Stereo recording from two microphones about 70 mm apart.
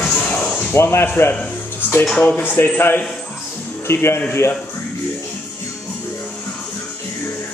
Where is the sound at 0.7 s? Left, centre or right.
Left.